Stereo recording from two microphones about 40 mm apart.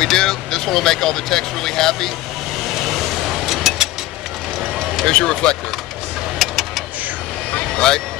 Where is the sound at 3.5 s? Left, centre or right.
Centre.